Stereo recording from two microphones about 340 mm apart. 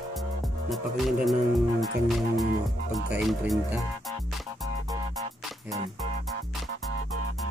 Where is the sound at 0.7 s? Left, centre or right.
Centre.